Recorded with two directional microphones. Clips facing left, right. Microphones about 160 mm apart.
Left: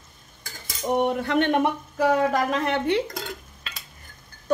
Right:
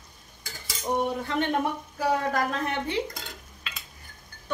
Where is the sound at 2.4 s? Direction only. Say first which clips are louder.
Left 6 dB; 90° left.